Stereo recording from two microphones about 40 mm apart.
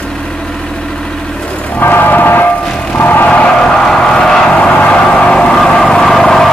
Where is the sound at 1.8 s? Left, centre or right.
Left.